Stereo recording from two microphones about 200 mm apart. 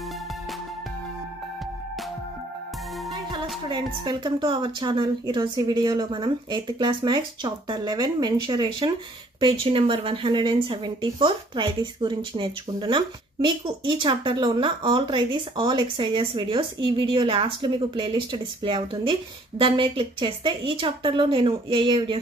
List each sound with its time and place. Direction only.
3.6 s a woman's voice: 20° right (ahead or behind)